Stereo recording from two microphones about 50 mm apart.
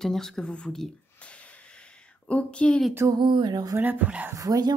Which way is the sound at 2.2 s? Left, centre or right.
Left.